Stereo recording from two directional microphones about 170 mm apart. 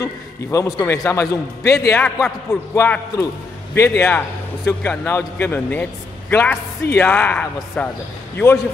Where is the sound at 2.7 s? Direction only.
15° left (ahead or behind).